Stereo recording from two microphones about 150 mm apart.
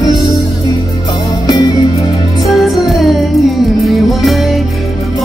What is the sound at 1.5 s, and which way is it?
Music, 25° left (ahead or behind).